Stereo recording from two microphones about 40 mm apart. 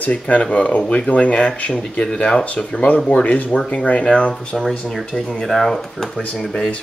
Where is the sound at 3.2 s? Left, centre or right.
Left.